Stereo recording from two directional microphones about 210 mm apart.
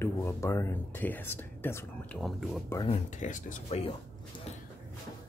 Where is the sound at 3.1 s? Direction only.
35° left (ahead or behind).